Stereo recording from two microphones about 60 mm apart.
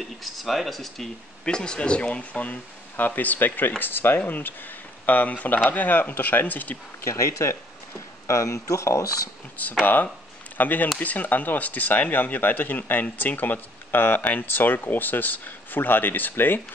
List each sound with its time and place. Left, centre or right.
0.2 s speech: centre; by 6.8 s left
7.1 s speech: left
9.6 s speech: left